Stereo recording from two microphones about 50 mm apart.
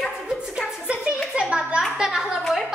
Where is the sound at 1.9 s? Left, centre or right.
Centre.